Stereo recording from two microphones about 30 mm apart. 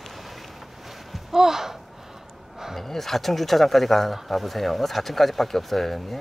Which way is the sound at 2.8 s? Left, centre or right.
Centre.